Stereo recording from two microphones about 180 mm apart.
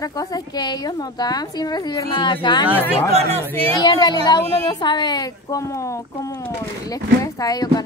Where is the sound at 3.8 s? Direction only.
20° left (ahead or behind).